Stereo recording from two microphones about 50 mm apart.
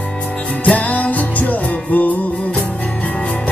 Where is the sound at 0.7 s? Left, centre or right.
Left.